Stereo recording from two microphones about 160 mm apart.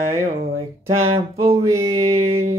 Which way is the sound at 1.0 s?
40° right (ahead or behind).